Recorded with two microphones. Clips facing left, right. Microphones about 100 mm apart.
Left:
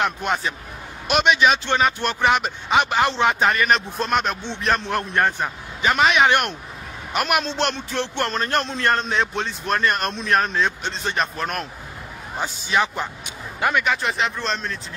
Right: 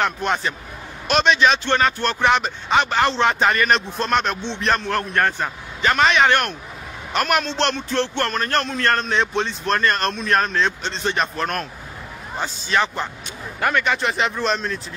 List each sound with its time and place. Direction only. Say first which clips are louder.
0.0 s speech: right 1 dB; 5° left (ahead or behind)
9.1 s speech: right 2 dB; centre (ahead or behind)